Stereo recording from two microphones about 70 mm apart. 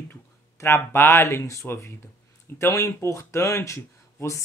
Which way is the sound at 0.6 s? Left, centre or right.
Left.